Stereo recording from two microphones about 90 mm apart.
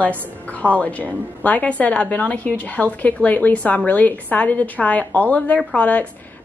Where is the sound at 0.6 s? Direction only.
15° left (ahead or behind).